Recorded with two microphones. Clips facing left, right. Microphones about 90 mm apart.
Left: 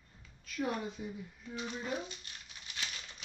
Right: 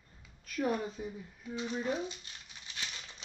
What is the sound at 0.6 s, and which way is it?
Speech, 35° right (ahead or behind).